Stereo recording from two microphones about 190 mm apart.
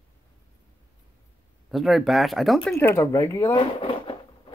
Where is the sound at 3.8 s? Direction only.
25° left (ahead or behind).